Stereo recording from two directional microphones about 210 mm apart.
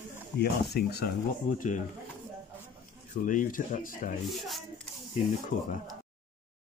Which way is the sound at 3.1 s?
40° left (ahead or behind).